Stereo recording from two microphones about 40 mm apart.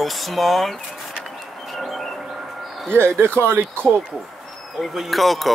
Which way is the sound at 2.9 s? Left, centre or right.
Right.